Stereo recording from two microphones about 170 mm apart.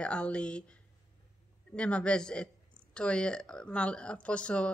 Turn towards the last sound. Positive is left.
turn(degrees=5)  # may be behind; listen again after turning